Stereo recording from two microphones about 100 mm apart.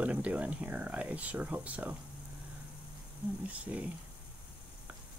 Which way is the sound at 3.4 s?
15° right (ahead or behind).